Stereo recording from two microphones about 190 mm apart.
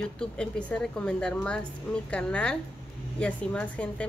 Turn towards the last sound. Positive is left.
turn(degrees=5)  # may be behind; listen again after turning